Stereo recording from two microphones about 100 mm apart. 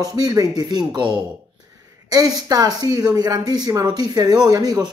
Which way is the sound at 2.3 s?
40° right (ahead or behind).